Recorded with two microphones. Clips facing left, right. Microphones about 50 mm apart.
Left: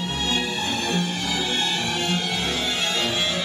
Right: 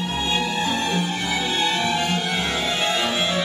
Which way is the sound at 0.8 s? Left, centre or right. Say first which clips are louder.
Right 2 dB; right.